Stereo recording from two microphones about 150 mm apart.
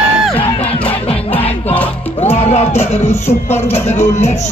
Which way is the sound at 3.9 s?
45° left (ahead or behind).